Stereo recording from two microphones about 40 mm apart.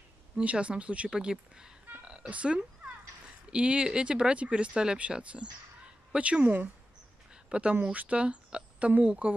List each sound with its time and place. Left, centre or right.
0.4 s speech: right
1.1 s speech: centre
2.2 s speech: right
7.9 s speech: right
8.2 s speech: right